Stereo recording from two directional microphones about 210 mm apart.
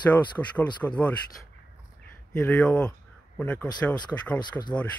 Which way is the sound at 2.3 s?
5° left (ahead or behind).